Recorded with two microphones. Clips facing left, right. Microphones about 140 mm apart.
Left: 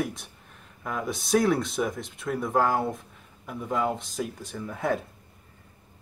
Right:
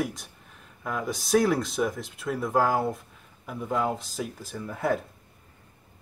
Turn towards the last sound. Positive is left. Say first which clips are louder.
# right 1 dB
turn(degrees=0)  # may be behind; listen again after turning